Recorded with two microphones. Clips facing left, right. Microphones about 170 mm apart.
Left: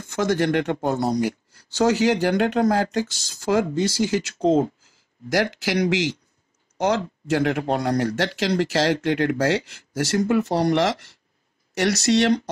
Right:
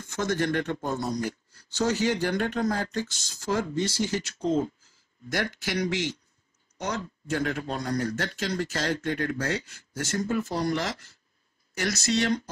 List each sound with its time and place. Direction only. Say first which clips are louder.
0.0 s speech: left 6 dB; 80° left
1.8 s speech: left 6 dB; 85° left
6.8 s speech: left 10 dB; 75° left (ahead or behind)